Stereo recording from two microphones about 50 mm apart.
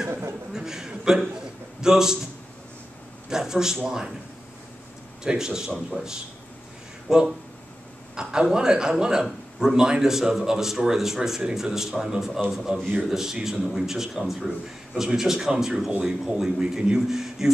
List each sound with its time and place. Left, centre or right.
0.5 s a sound: centre
1.8 s a man's voice: centre
3.3 s a man's voice: centre
5.2 s a man's voice: centre